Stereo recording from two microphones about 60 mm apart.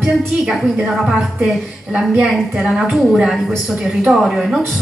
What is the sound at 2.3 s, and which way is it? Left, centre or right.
Speech, centre.